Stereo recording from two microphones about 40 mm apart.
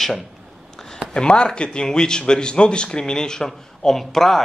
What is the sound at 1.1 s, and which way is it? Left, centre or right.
Speech, left.